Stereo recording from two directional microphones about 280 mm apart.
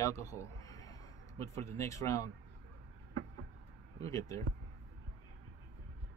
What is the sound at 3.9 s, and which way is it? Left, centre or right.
Speech, centre.